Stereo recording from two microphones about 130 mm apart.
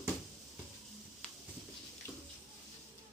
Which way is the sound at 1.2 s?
10° left (ahead or behind).